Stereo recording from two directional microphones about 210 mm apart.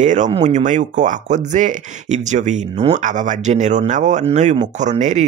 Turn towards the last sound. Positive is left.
turn(degrees=-35)  # may be behind; listen again after turning